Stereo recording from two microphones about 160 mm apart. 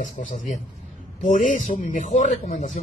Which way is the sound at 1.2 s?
55° left (ahead or behind).